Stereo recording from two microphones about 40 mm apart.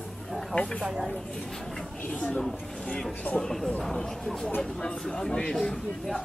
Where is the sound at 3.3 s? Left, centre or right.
Centre.